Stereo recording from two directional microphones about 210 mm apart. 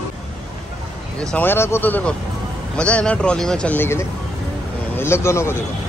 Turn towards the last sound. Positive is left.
turn(degrees=15)  # may be behind; listen again after turning